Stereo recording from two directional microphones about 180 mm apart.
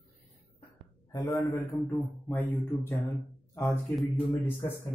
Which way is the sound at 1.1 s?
20° left (ahead or behind).